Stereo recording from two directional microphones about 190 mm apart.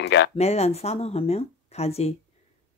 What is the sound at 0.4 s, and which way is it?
Speech, 35° left (ahead or behind).